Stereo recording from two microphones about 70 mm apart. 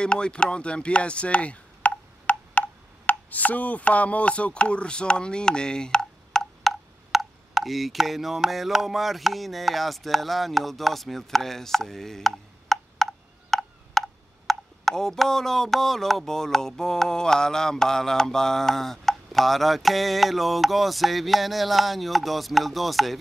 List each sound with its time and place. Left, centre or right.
0.0 s speech: centre
3.1 s chopping: left; by 23.1 s centre